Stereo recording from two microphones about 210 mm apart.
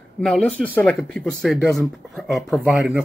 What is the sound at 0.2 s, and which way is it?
Speech, 5° left (ahead or behind).